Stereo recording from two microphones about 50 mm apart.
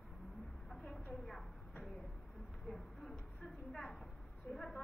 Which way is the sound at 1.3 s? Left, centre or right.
Centre.